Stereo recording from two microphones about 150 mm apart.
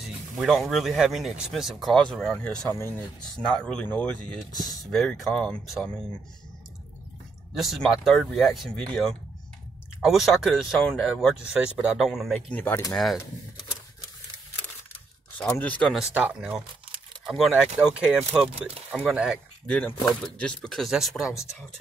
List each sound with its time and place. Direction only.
0.0 s speech: centre (ahead or behind)
2.7 s speech: 15° left (ahead or behind)
3.4 s speech: 5° left (ahead or behind)
7.5 s speech: centre (ahead or behind)
12.5 s speech: 15° left (ahead or behind)
12.9 s speech: centre (ahead or behind)
15.3 s speech: 15° left (ahead or behind); by 19.4 s 5° right (ahead or behind)
19.7 s speech: 5° left (ahead or behind)